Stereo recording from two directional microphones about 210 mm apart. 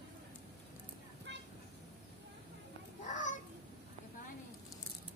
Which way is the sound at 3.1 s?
35° left (ahead or behind).